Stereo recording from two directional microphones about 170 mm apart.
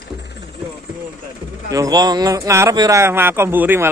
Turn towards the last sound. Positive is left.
turn(degrees=-10)  # may be behind; listen again after turning